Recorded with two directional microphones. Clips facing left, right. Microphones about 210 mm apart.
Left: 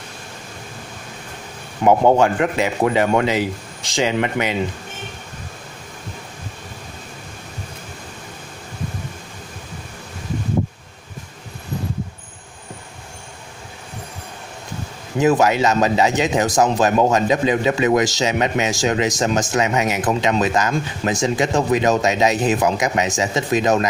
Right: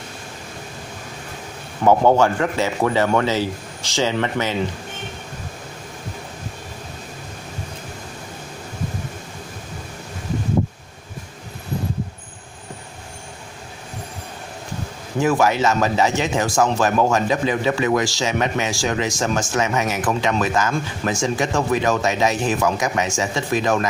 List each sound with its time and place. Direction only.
1.8 s a man's voice: 15° left (ahead or behind)
15.1 s speech: 20° left (ahead or behind)